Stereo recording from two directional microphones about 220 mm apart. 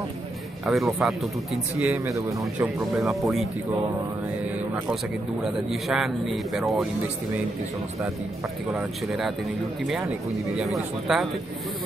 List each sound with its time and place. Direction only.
0.7 s a man's voice: centre (ahead or behind)
3.0 s speech: centre (ahead or behind)
5.4 s speech: centre (ahead or behind)
8.7 s speech: centre (ahead or behind)
10.6 s speech: centre (ahead or behind)